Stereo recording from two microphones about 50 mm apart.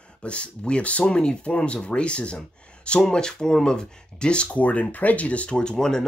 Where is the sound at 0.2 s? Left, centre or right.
Left.